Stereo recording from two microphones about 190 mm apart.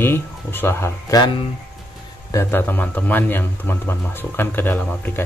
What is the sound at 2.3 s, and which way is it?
Speech, 15° left (ahead or behind).